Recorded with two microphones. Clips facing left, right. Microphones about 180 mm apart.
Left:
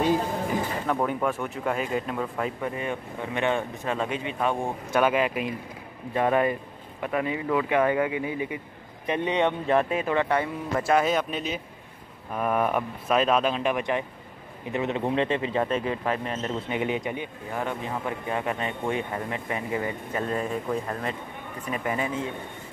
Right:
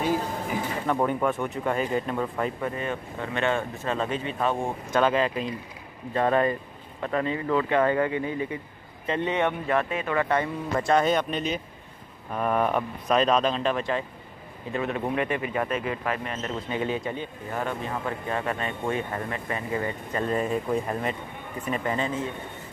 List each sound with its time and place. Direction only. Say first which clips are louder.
0.8 s speech: right 3 dB; centre (ahead or behind)
2.6 s a man's voice: even; 15° left (ahead or behind)
9.8 s speech: left 3 dB; 30° left (ahead or behind)
10.1 s a man's voice: right 2 dB; 10° left (ahead or behind)
20.2 s speech: right 3 dB; 10° right (ahead or behind)
21.8 s a man's voice: left 1 dB; 10° left (ahead or behind)